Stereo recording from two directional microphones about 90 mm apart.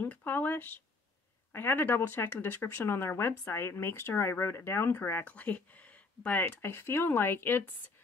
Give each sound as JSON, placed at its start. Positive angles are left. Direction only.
{"t": 0.0, "sound": "speech", "side_deg": 20}
{"t": 6.4, "sound": "speech", "side_deg": 25}